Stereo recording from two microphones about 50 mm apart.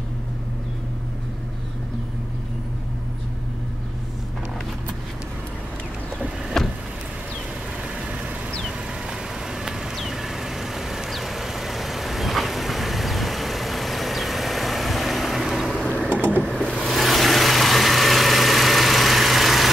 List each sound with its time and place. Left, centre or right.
6.5 s vehicle: centre
9.5 s vehicle: centre
15.8 s a sound: centre
17.0 s vehicle: centre